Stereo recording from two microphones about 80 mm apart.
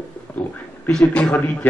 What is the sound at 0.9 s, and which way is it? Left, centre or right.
Speech, centre.